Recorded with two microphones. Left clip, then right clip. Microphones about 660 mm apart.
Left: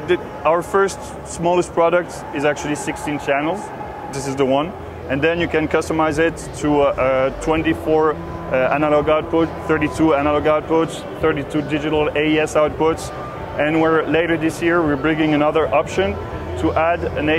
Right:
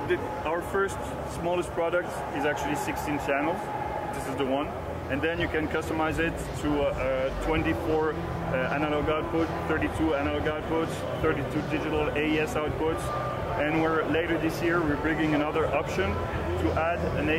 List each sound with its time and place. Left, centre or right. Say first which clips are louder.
0.1 s speech: left 13 dB; left